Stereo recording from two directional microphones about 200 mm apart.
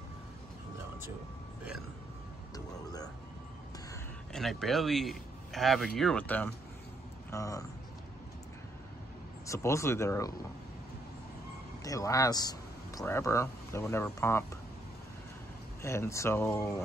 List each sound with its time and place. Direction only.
2.5 s a sound: 20° left (ahead or behind)
4.3 s speech: centre (ahead or behind)
9.5 s speech: 15° left (ahead or behind)
11.8 s speech: 15° left (ahead or behind)
15.8 s speech: 15° left (ahead or behind)